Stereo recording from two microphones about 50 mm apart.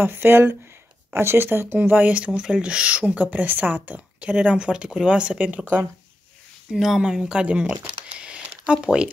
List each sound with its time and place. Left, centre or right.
0.1 s speech: right
2.1 s a woman's voice: right
4.3 s a woman's voice: centre
6.7 s speech: centre
7.4 s a sound: right
8.8 s speech: centre